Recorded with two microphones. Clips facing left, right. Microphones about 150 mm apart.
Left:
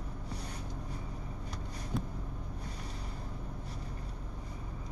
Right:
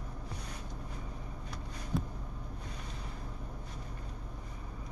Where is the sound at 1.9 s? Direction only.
Centre (ahead or behind).